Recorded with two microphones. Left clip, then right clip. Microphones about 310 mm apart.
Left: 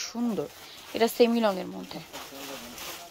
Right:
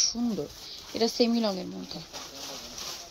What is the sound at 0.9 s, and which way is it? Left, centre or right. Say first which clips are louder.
Speech: left 3 dB; centre.